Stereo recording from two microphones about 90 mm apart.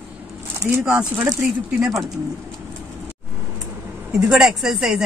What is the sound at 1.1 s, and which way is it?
Speech, 20° right (ahead or behind).